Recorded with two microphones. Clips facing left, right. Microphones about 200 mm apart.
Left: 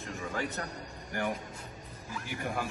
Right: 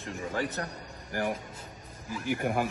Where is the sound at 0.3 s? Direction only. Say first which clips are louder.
Right 3 dB; 30° right (ahead or behind).